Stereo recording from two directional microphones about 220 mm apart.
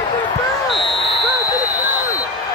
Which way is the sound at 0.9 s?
Centre (ahead or behind).